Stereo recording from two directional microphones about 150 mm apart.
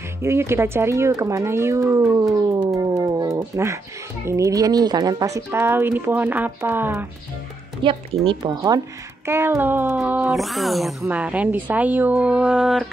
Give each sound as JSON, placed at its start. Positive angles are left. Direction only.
{"t": 0.2, "sound": "speech", "side_deg": -15}
{"t": 7.8, "sound": "speech", "side_deg": -35}
{"t": 10.3, "sound": "speech", "side_deg": 0}